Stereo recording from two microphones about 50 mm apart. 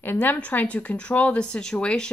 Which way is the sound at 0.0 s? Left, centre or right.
Left.